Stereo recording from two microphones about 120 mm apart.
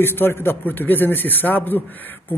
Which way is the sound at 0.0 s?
20° left (ahead or behind).